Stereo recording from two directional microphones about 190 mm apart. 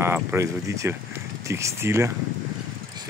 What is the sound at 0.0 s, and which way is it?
Speech, 10° right (ahead or behind).